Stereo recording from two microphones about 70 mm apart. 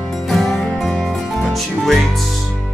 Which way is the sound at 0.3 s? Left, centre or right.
Centre.